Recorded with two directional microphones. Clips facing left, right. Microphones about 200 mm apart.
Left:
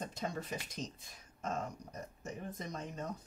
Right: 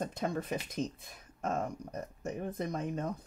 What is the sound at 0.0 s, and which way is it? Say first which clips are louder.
Speech: right 6 dB; 55° right (ahead or behind).